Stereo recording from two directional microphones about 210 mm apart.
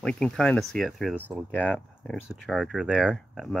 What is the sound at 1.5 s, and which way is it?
Speech, 5° left (ahead or behind).